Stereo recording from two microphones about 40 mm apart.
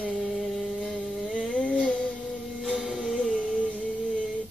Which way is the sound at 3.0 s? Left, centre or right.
Centre.